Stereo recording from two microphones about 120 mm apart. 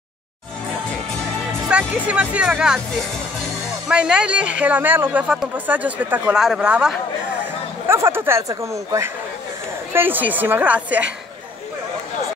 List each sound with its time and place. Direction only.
1.7 s speech: 10° right (ahead or behind)
3.9 s speech: 10° right (ahead or behind)
6.3 s speech: 5° right (ahead or behind)
7.9 s speech: 20° right (ahead or behind)